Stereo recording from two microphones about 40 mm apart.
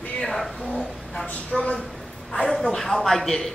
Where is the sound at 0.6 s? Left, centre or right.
Left.